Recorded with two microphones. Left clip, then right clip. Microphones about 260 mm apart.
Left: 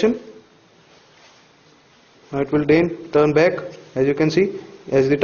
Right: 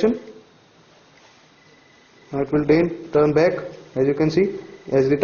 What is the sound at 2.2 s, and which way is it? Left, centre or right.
A man's voice, centre.